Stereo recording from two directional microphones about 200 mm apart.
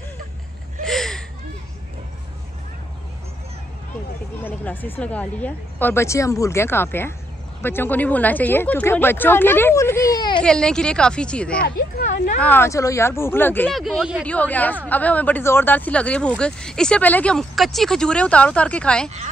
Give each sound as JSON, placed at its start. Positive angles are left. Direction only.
{"t": 0.8, "sound": "a sound", "side_deg": 0}
{"t": 4.5, "sound": "speech", "side_deg": 10}
{"t": 10.4, "sound": "speech", "side_deg": 5}
{"t": 11.6, "sound": "speech", "side_deg": 40}
{"t": 12.4, "sound": "speech", "side_deg": 10}
{"t": 13.7, "sound": "speech", "side_deg": 0}